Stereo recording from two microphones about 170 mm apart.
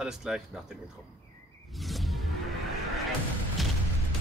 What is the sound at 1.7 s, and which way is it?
Whoosh, centre (ahead or behind).